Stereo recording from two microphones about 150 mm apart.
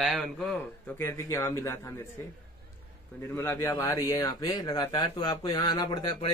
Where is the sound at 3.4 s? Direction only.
15° left (ahead or behind).